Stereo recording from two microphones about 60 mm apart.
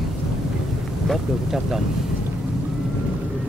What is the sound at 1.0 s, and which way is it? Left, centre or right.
Speech, centre.